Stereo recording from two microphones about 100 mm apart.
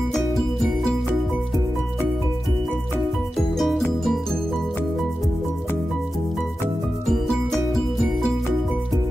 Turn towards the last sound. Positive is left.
turn(degrees=0)  # may be behind; listen again after turning